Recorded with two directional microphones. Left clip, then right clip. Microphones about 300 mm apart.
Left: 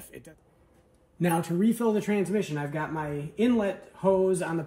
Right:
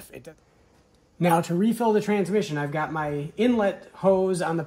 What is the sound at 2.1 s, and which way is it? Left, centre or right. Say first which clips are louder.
Speech: right 4 dB; right.